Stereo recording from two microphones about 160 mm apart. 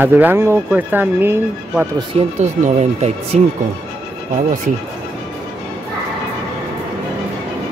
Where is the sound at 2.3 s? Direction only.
45° right (ahead or behind).